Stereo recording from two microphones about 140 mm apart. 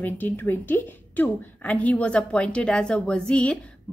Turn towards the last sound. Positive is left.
turn(degrees=5)  # may be behind; listen again after turning